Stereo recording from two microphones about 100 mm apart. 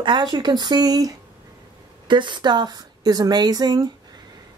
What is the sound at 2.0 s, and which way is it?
A woman's voice, 50° right (ahead or behind).